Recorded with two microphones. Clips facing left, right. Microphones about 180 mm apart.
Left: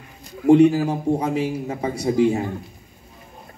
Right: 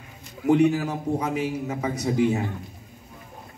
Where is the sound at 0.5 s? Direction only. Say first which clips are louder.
Left 6 dB; 30° left (ahead or behind).